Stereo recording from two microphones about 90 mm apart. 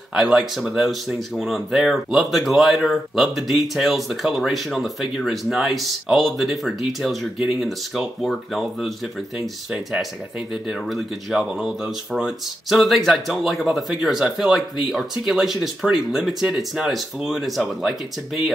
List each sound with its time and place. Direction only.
0.1 s speech: 5° right (ahead or behind)
10.5 s speech: centre (ahead or behind)